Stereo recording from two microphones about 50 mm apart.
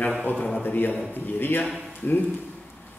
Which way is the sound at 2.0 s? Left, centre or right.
Left.